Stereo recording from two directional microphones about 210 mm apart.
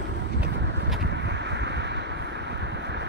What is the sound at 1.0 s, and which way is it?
Vehicle, 55° right (ahead or behind).